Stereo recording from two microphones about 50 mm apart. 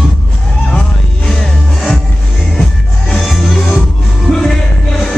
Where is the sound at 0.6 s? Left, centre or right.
Centre.